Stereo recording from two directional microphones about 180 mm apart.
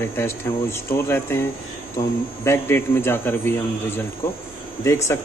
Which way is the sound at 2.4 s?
15° left (ahead or behind).